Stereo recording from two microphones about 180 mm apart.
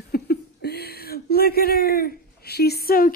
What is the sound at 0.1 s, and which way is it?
Speech, 60° left (ahead or behind).